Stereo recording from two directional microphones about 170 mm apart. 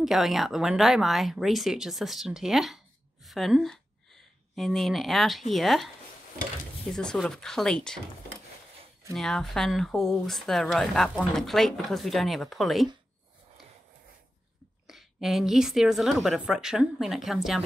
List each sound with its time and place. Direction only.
0.0 s speech: centre (ahead or behind)
6.9 s speech: 5° left (ahead or behind)
9.1 s speech: centre (ahead or behind)
14.9 s speech: centre (ahead or behind)